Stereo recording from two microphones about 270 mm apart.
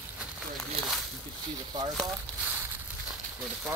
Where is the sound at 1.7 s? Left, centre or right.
Centre.